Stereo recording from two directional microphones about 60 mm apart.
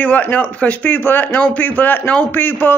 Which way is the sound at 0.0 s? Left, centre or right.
Left.